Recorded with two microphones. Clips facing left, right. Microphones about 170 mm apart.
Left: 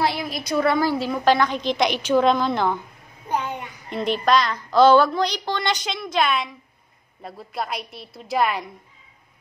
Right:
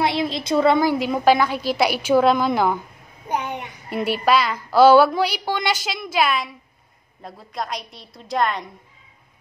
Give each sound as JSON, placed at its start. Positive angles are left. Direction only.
{"t": 0.0, "sound": "a woman's voice", "side_deg": -25}
{"t": 3.3, "sound": "a sound", "side_deg": -15}
{"t": 3.9, "sound": "a woman's voice", "side_deg": -10}